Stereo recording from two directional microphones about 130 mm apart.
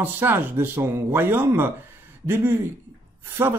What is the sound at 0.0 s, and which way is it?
A man's voice, 15° right (ahead or behind).